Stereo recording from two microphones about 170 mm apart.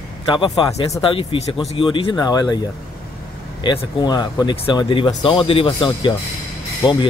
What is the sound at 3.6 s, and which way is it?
Speech, 25° left (ahead or behind).